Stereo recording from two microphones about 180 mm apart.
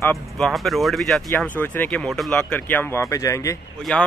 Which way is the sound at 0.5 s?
Centre (ahead or behind).